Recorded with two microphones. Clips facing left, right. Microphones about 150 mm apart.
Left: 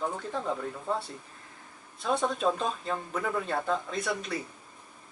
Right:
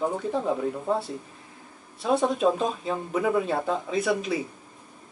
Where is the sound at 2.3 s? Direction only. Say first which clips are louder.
Right 5 dB; 5° right (ahead or behind).